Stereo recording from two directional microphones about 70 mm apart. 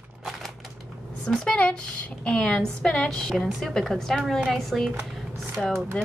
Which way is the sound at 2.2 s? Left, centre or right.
Centre.